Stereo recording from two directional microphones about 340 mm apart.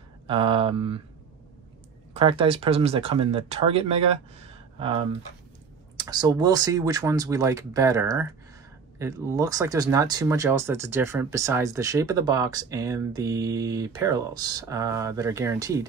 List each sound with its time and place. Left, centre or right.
0.3 s speech: centre
2.1 s speech: centre